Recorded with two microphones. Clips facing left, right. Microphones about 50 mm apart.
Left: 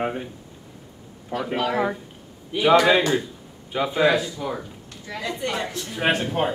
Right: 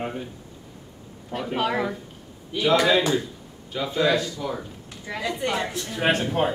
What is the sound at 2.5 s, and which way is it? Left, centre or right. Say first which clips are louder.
Speech: left 3 dB; centre.